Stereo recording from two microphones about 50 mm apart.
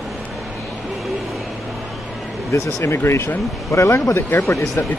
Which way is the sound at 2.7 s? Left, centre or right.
Left.